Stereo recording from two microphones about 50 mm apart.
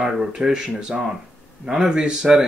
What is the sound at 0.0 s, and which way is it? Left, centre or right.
Speech, centre.